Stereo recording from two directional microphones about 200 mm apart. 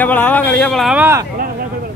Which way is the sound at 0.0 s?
10° left (ahead or behind).